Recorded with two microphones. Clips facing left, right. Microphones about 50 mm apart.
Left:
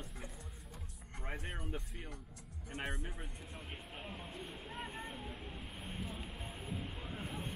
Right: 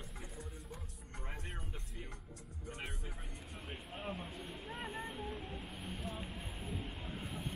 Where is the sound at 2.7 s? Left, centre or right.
Left.